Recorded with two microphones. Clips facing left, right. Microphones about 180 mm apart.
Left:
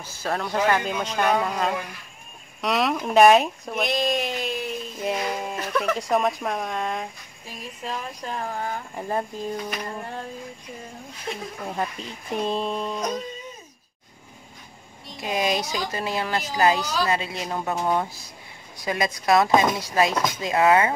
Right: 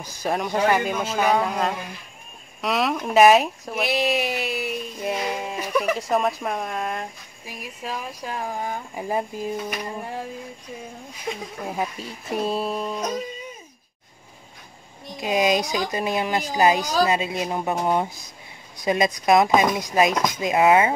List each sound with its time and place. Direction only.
0.0 s speech: 15° right (ahead or behind)
11.2 s speech: 5° right (ahead or behind)
15.1 s speech: 20° right (ahead or behind)